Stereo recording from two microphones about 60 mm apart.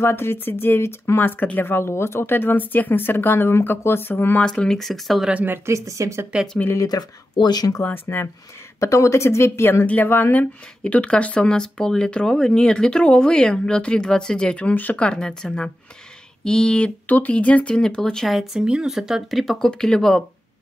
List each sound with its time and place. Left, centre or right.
0.0 s speech: left
4.4 s speech: centre
5.7 s speech: right
7.8 s speech: left
8.7 s speech: left
10.8 s speech: centre
18.2 s speech: centre
19.4 s speech: centre